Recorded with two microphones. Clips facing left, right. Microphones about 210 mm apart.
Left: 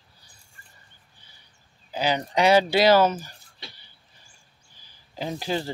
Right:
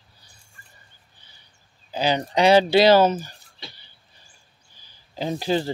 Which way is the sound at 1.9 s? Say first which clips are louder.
Right 2 dB; 30° right (ahead or behind).